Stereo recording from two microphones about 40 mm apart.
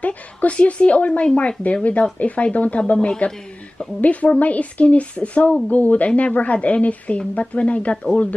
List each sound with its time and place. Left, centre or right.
0.0 s speech: left